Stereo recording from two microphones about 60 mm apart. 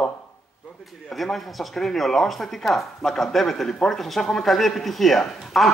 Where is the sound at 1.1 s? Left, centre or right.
Centre.